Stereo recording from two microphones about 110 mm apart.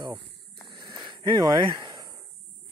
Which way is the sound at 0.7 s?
40° right (ahead or behind).